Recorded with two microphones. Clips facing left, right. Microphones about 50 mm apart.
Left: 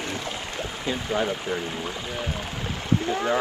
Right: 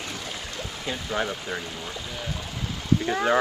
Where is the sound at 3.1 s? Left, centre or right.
Right.